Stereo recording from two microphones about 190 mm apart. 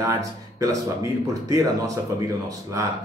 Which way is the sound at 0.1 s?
15° right (ahead or behind).